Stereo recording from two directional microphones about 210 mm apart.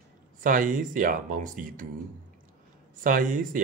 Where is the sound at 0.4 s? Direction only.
40° right (ahead or behind).